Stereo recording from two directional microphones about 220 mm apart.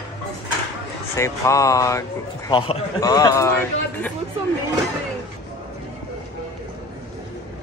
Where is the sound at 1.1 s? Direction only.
15° left (ahead or behind).